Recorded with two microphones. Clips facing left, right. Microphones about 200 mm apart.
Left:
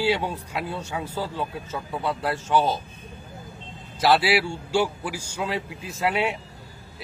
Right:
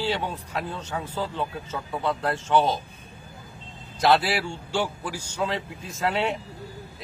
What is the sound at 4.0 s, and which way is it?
A man's voice, 5° left (ahead or behind).